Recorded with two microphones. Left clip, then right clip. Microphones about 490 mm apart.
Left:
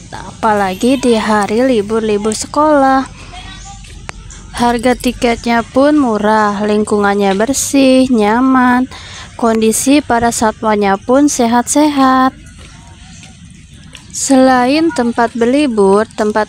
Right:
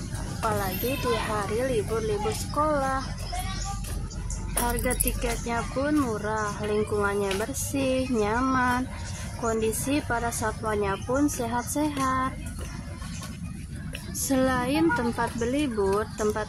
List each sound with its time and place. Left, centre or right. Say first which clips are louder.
0.4 s speech: left 16 dB; right
4.6 s speech: left 18 dB; right
14.2 s speech: left 16 dB; right